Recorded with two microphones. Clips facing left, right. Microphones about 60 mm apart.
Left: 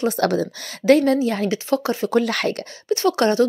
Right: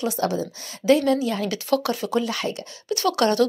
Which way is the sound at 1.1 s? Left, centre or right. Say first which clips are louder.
Left 4 dB; left.